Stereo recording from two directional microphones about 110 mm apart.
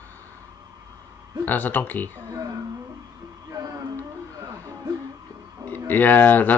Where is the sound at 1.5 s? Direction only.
15° left (ahead or behind).